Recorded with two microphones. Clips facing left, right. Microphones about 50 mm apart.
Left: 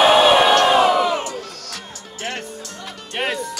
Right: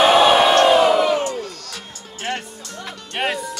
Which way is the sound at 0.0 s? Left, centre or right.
Centre.